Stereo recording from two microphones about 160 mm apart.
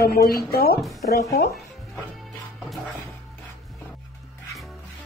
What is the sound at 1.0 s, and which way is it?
Speech, 90° left.